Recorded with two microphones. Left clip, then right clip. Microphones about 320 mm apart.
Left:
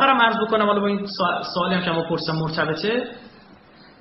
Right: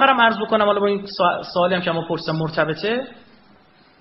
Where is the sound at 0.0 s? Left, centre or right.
Right.